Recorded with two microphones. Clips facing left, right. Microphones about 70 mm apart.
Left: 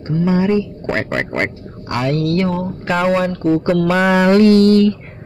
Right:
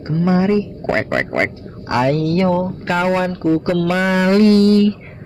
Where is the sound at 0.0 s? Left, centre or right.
Centre.